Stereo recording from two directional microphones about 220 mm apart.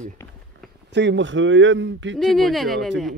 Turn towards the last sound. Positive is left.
turn(degrees=0)  # may be behind; listen again after turning